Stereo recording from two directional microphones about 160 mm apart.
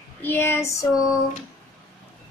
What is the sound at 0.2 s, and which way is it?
Child singing, 15° left (ahead or behind).